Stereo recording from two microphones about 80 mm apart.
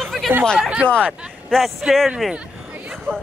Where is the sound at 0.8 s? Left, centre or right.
Centre.